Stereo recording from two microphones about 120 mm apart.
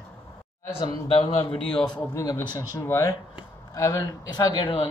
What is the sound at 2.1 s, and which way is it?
Speech, 25° left (ahead or behind).